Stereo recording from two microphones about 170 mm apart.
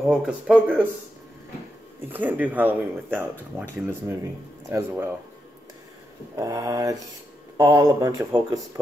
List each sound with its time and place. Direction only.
0.0 s speech: 5° right (ahead or behind)
2.1 s speech: 10° right (ahead or behind)
4.6 s speech: 15° right (ahead or behind)
6.3 s speech: 20° right (ahead or behind)